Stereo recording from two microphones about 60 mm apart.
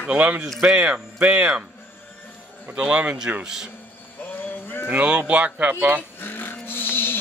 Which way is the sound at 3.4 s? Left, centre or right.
Centre.